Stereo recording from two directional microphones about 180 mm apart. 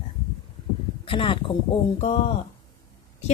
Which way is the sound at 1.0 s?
30° left (ahead or behind).